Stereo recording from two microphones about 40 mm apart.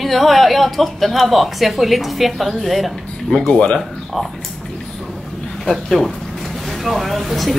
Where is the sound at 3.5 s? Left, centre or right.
Left.